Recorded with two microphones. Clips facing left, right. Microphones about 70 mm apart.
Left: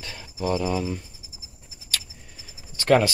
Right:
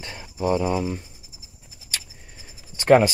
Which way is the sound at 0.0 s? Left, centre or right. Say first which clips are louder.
Right 2 dB; right.